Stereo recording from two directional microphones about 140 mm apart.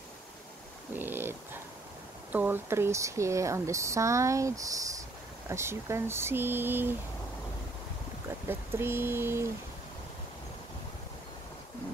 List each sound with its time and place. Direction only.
0.9 s dog: 15° right (ahead or behind)
2.3 s speech: 15° right (ahead or behind)
8.5 s speech: 15° right (ahead or behind)